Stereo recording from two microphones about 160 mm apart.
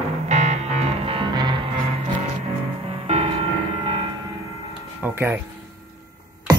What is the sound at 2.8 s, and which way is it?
Music, 40° right (ahead or behind).